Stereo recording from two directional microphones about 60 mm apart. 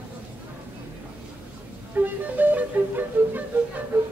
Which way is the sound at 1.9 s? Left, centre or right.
Right.